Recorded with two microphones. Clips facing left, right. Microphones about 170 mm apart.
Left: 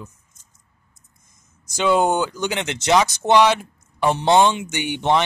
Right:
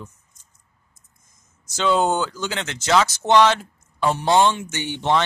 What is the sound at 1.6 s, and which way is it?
Speech, 15° left (ahead or behind).